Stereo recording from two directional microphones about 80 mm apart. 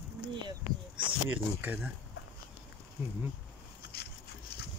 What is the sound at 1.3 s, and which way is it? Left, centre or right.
Speech, centre.